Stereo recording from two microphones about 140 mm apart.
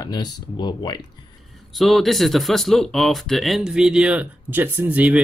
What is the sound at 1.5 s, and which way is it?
Speech, centre (ahead or behind).